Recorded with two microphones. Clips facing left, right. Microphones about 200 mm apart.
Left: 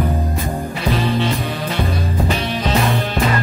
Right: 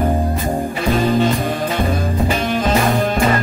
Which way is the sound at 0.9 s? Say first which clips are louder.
Right 4 dB; 50° right (ahead or behind).